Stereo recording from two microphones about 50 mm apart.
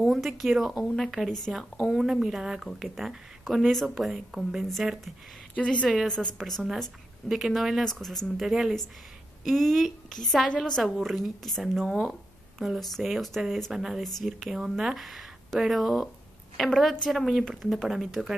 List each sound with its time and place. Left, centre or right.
0.0 s speech: centre
5.6 s speech: centre
7.2 s speech: centre
7.8 s speech: centre
8.4 s speech: centre